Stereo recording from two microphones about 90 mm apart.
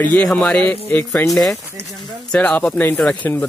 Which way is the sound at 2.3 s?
15° left (ahead or behind).